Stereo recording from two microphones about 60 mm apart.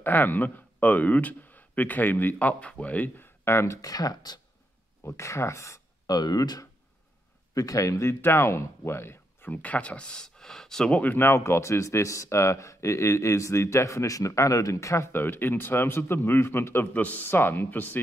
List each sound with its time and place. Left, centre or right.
0.0 s a man's voice: left
3.4 s speech: left
3.8 s speech: left
5.0 s speech: left
7.5 s speech: left
9.5 s speech: left; by 10.9 s centre
10.9 s speech: left
11.2 s speech: left
15.1 s speech: left
16.9 s speech: left